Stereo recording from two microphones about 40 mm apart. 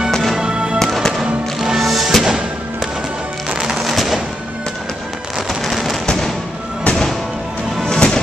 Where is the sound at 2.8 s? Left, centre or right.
Centre.